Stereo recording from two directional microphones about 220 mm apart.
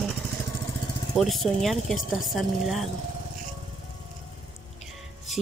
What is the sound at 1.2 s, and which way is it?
Speech, centre (ahead or behind).